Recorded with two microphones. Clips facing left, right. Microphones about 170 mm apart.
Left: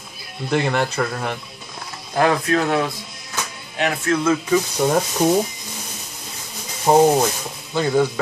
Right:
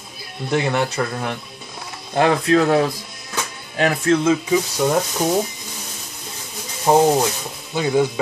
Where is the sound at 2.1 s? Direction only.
30° right (ahead or behind).